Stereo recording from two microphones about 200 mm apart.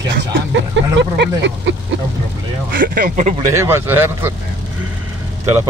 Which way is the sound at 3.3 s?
15° right (ahead or behind).